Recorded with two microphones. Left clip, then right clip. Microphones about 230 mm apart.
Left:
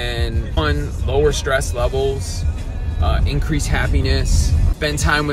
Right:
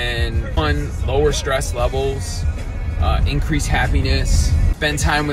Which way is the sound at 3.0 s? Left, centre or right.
Centre.